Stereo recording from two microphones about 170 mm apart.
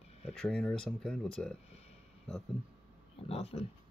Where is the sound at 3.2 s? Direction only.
35° left (ahead or behind).